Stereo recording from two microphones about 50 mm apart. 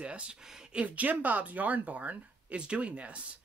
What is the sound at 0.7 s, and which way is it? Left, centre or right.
Speech, right.